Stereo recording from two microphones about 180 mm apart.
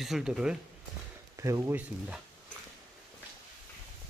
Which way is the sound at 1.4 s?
15° right (ahead or behind).